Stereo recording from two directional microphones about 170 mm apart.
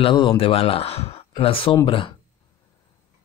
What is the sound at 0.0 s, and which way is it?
Speech, 30° left (ahead or behind).